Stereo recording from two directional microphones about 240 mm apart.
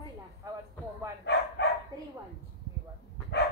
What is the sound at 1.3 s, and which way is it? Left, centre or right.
Dog, left.